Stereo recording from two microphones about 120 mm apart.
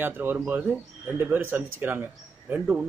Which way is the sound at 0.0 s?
15° right (ahead or behind).